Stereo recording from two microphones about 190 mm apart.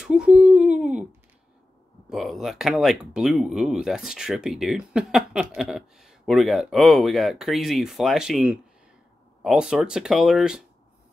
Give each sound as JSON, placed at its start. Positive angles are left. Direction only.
{"t": 0.0, "sound": "humming", "side_deg": -5}
{"t": 2.0, "sound": "speech", "side_deg": 0}